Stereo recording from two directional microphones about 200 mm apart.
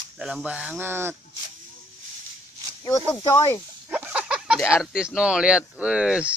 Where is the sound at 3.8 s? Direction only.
5° right (ahead or behind).